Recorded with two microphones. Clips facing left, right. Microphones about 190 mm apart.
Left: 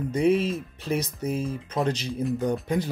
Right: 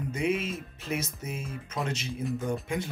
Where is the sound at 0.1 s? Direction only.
35° left (ahead or behind).